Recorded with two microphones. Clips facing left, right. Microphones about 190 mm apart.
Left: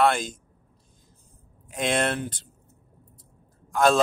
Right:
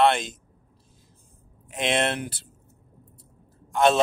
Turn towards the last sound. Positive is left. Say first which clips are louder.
# right 1 dB
turn(degrees=0)  # may be behind; listen again after turning